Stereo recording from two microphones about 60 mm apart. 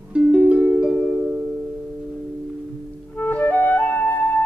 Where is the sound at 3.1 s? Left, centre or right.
Left.